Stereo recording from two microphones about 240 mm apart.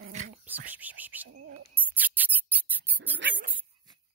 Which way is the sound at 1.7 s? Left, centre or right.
Centre.